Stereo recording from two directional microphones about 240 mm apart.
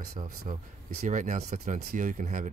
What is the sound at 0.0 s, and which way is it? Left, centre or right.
Speech, right.